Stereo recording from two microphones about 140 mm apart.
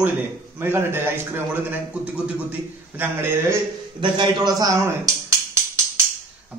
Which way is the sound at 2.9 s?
15° right (ahead or behind).